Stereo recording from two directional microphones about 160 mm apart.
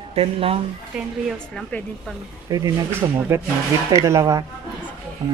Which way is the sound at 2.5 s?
20° right (ahead or behind).